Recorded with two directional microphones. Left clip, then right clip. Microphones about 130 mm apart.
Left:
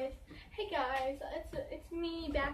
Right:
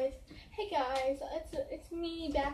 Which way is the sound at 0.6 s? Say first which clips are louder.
Right 2 dB; 20° right (ahead or behind).